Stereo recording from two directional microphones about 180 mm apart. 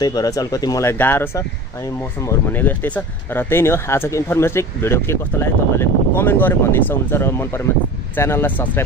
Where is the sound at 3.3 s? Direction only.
15° left (ahead or behind).